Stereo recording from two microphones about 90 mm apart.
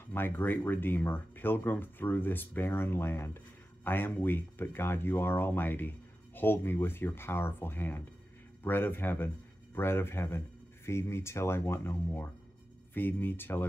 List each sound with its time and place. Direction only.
0.1 s speech: 25° left (ahead or behind)